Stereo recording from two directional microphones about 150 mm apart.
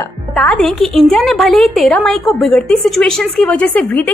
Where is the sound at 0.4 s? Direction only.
5° left (ahead or behind).